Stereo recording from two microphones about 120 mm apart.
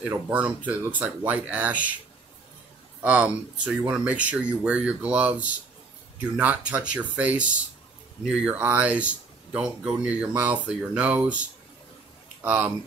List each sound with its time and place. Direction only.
0.7 s speech: 15° right (ahead or behind)
3.0 s speech: 10° right (ahead or behind)
12.4 s speech: 10° right (ahead or behind)